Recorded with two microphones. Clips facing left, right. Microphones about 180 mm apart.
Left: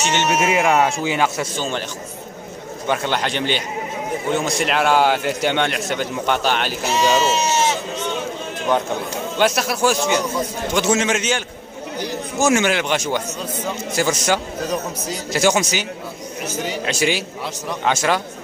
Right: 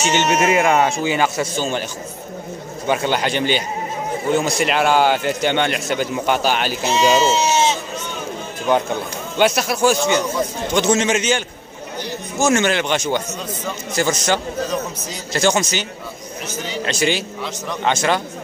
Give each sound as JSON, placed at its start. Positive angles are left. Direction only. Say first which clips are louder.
{"t": 0.0, "sound": "speech", "louder": "right 2 dB", "side_deg": 0}
{"t": 2.9, "sound": "speech", "louder": "right 2 dB", "side_deg": -5}
{"t": 6.9, "sound": "speech", "louder": "right 2 dB", "side_deg": -20}
{"t": 9.4, "sound": "speech", "louder": "right 2 dB", "side_deg": 0}